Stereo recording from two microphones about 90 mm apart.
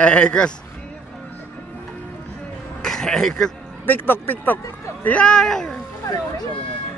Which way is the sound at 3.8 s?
20° left (ahead or behind).